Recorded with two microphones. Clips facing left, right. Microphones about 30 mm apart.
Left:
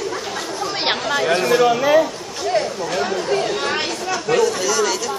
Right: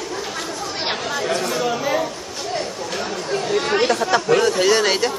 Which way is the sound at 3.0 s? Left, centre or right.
Centre.